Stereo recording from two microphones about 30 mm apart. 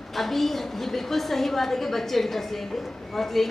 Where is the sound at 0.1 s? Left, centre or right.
Centre.